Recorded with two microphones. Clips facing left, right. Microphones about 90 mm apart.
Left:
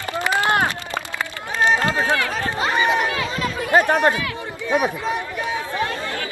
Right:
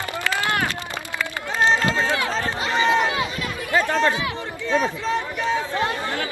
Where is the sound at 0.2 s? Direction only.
20° left (ahead or behind).